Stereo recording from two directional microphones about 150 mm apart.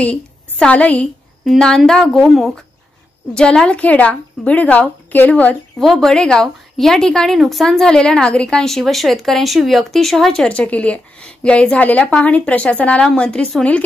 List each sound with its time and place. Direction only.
0.0 s a woman's voice: 10° left (ahead or behind)